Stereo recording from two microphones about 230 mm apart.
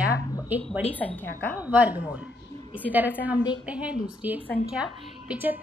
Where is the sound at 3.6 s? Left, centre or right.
Centre.